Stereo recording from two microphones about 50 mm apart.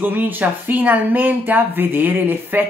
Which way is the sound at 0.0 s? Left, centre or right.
Right.